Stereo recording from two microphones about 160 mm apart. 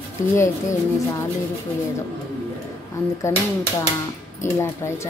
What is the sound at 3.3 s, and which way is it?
Speech, 15° left (ahead or behind).